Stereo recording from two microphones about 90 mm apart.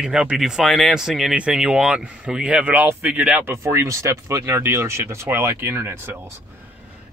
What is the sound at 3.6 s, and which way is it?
Speech, 35° right (ahead or behind).